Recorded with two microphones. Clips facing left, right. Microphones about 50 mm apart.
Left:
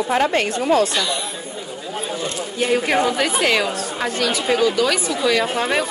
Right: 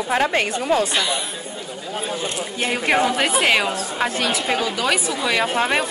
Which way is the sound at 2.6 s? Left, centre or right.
Centre.